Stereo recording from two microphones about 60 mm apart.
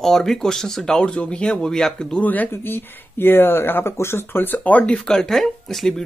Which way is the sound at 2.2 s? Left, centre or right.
Left.